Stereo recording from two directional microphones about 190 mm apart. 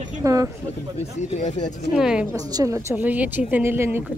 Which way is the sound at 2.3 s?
20° right (ahead or behind).